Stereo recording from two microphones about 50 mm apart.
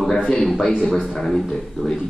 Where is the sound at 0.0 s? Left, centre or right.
Centre.